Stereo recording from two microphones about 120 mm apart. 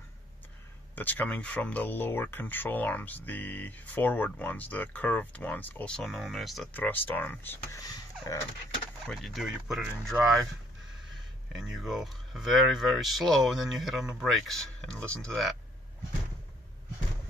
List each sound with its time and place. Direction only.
0.9 s speech: 15° left (ahead or behind)
6.7 s speech: 15° left (ahead or behind)
7.8 s a sound: 30° left (ahead or behind)
9.0 s speech: centre (ahead or behind)
11.5 s speech: 5° right (ahead or behind)